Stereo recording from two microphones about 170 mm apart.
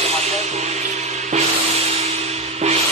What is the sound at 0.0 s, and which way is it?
Music, 40° right (ahead or behind).